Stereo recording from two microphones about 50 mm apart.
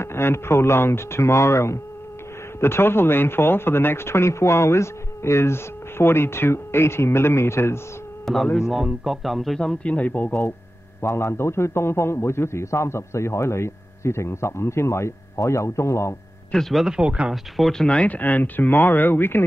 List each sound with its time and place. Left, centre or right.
0.0 s speech: left
2.6 s speech: left
8.5 s speech: centre
9.6 s speech: centre
9.9 s speech: left
11.0 s speech: left
16.7 s speech: centre
17.3 s speech: centre
17.8 s speech: left